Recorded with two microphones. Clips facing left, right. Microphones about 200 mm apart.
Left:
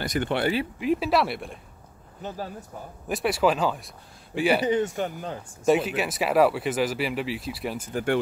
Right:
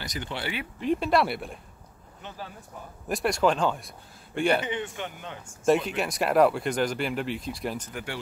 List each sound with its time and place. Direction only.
0.0 s speech: 55° left (ahead or behind)
0.7 s speech: 5° left (ahead or behind)
2.2 s speech: 40° left (ahead or behind)
3.1 s speech: 5° left (ahead or behind)
4.6 s speech: 40° left (ahead or behind)
5.7 s speech: 5° left (ahead or behind)